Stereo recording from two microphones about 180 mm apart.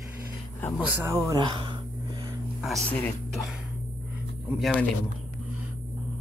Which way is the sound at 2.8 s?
10° left (ahead or behind).